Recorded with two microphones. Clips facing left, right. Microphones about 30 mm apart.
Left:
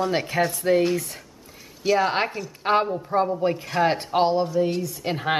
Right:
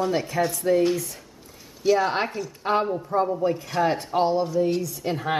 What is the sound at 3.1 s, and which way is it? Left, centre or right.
Speech, left.